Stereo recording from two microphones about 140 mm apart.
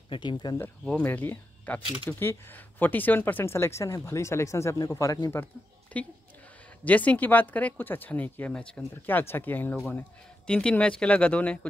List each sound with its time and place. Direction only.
0.1 s speech: 35° left (ahead or behind)
0.8 s speech: 10° left (ahead or behind)
5.9 s a woman's voice: 10° left (ahead or behind)